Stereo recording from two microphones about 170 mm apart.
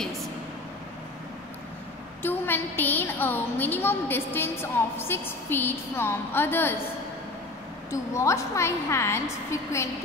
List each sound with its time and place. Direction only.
2.2 s a woman's voice: 10° left (ahead or behind)
7.9 s a woman's voice: 15° left (ahead or behind)